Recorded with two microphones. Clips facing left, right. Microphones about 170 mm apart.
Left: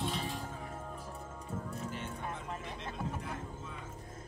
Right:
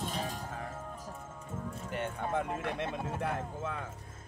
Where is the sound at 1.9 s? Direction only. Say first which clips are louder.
Right 7 dB; 65° right (ahead or behind).